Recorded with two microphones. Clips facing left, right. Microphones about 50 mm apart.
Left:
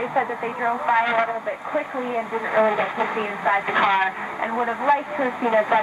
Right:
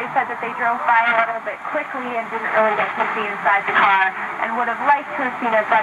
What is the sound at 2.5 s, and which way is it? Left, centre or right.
Speech, right.